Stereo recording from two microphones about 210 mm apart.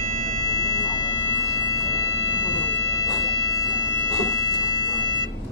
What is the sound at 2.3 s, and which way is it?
Music, 20° left (ahead or behind).